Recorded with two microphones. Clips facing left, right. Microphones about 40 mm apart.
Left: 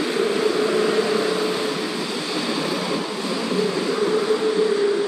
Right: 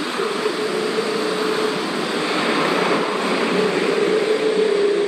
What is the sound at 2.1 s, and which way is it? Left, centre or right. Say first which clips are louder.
Vehicle: right 8 dB; right.